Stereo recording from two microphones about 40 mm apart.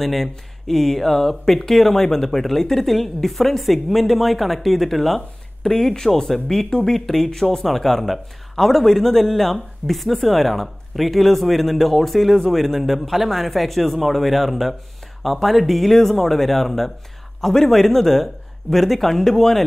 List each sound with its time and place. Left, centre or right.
0.0 s speech: centre